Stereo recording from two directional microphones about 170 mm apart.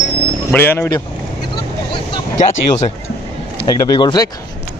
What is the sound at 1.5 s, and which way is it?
Vehicle, 30° left (ahead or behind).